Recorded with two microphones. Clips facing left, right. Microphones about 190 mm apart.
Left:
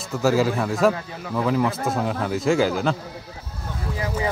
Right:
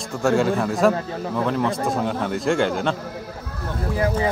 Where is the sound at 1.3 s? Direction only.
5° left (ahead or behind).